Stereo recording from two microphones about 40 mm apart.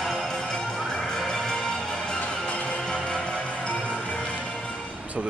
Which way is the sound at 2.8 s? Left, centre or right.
Centre.